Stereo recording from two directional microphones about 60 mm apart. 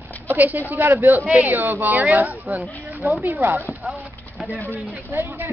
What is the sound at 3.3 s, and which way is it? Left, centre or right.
Speech, right.